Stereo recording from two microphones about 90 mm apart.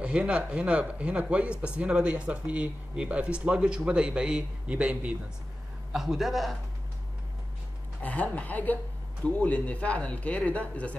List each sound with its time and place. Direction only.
0.0 s a man's voice: 10° right (ahead or behind)
8.0 s speech: 15° left (ahead or behind)